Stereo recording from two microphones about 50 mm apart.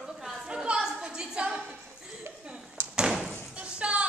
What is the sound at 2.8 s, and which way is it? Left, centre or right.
Door, right.